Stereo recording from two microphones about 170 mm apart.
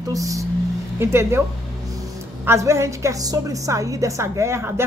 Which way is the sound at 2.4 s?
15° right (ahead or behind).